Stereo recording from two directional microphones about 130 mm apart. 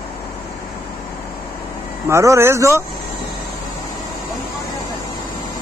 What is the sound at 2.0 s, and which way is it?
Speech, 20° right (ahead or behind).